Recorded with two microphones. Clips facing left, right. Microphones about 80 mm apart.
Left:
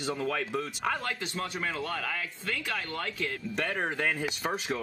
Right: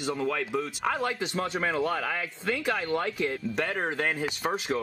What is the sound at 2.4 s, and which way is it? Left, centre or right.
Speech, right.